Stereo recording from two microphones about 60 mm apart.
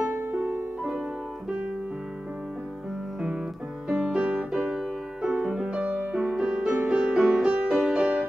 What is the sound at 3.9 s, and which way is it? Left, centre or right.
Music, centre.